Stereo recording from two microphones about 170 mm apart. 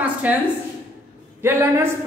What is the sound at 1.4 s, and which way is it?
Speech, 15° right (ahead or behind).